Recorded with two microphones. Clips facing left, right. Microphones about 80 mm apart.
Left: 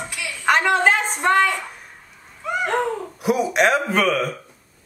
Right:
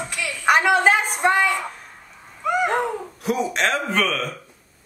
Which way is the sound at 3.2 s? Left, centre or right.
Centre.